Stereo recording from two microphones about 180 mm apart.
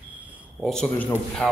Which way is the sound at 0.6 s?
5° left (ahead or behind).